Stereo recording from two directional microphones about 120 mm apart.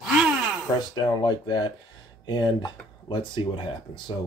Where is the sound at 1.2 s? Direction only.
35° left (ahead or behind).